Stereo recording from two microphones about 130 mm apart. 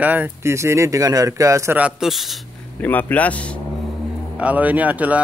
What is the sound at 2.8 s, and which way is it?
Speech, 15° left (ahead or behind).